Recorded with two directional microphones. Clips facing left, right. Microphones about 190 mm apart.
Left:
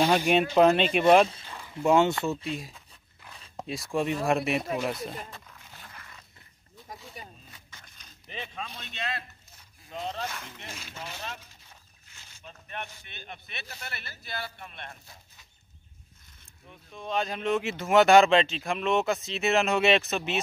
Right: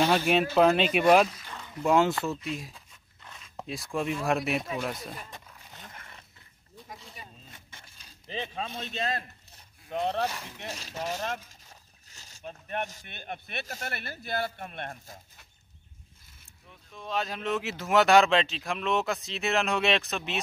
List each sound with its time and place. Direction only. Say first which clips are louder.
0.0 s speech: left 1 dB; 10° left (ahead or behind)
0.6 s speech: left 1 dB; centre (ahead or behind)
1.5 s a sound: left 1 dB; 10° left (ahead or behind)
1.9 s speech: left 2 dB; centre (ahead or behind)
5.3 s a sound: even; 20° right (ahead or behind)
8.3 s speech: right 4 dB; 30° right (ahead or behind)
9.8 s speech: right 6 dB; 60° right (ahead or behind)
10.7 s speech: right 9 dB; 40° right (ahead or behind)
16.6 s speech: left 3 dB; centre (ahead or behind)